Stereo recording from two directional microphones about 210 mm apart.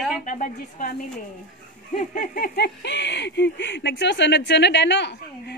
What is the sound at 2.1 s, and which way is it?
Speech, 45° left (ahead or behind).